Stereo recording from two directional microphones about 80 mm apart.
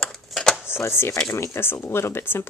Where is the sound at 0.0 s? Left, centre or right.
Centre.